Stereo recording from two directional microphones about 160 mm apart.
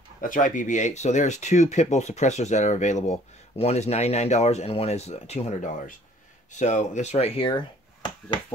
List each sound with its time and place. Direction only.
0.2 s speech: 55° left (ahead or behind); by 8.4 s 30° left (ahead or behind)